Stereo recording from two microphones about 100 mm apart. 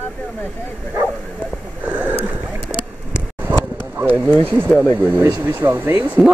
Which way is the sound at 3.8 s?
20° right (ahead or behind).